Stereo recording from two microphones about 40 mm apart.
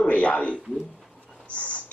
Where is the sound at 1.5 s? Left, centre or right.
Left.